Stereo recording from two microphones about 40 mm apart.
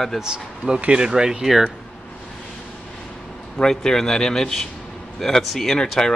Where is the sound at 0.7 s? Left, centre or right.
Right.